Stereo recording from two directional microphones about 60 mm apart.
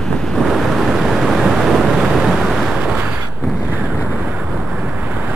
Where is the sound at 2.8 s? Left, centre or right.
Right.